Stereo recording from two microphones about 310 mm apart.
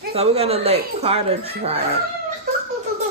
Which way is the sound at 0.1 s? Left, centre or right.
Centre.